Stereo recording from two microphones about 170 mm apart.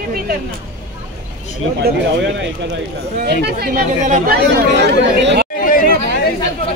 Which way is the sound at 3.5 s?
65° right (ahead or behind).